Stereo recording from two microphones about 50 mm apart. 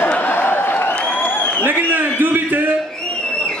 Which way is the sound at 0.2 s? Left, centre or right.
Left.